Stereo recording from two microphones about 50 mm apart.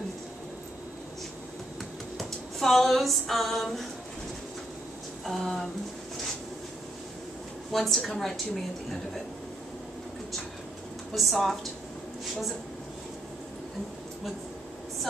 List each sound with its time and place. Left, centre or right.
2.1 s a sound: centre
5.2 s a woman's voice: centre
7.7 s a woman's voice: centre
11.1 s a woman's voice: centre